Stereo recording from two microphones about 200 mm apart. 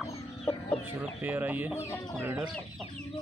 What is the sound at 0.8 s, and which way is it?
Speech, 10° right (ahead or behind).